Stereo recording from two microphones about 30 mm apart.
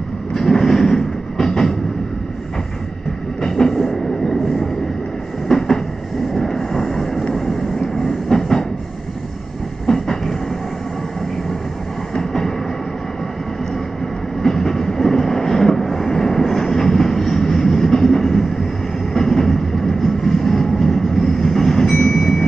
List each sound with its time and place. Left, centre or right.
0.3 s train: centre
3.4 s train: centre
5.5 s train: left
6.3 s vehicle: centre
8.3 s train: centre
9.8 s train: centre
12.2 s train: centre
14.4 s train: centre
19.1 s vehicle: centre